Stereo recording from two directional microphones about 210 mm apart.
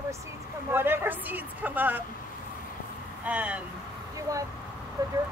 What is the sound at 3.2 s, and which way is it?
A woman's voice, 5° right (ahead or behind).